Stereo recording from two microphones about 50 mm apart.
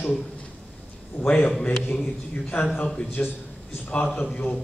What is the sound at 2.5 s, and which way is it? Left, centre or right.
Speech, left.